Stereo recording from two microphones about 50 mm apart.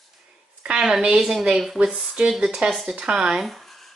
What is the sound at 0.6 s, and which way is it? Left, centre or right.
A woman's voice, centre.